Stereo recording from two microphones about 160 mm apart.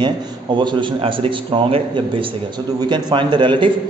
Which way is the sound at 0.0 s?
30° right (ahead or behind).